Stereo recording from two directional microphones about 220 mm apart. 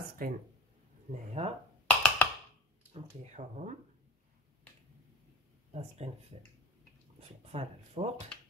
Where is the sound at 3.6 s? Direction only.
30° right (ahead or behind).